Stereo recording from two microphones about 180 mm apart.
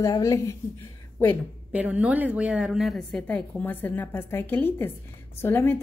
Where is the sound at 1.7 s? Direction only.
10° right (ahead or behind).